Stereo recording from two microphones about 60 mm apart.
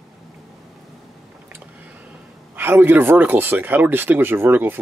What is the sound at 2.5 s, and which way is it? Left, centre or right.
Speech, right.